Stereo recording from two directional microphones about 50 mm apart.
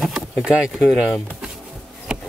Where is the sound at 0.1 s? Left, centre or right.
Centre.